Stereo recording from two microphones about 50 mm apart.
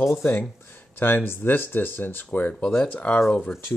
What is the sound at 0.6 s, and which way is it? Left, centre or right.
Speech, left.